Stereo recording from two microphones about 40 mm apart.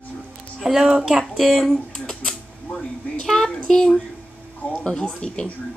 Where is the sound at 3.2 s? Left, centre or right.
Centre.